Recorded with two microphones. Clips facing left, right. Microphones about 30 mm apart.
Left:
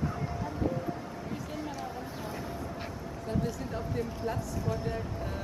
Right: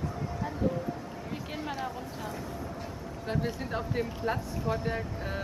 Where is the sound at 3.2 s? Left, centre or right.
Right.